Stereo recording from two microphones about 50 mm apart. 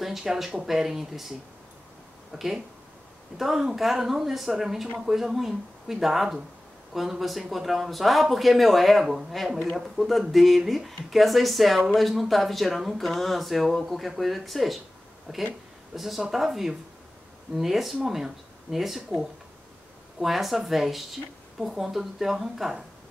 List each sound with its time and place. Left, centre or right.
0.0 s speech: centre
2.3 s speech: centre
15.3 s speech: centre